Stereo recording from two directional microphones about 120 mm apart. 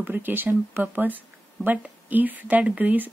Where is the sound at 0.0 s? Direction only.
15° right (ahead or behind).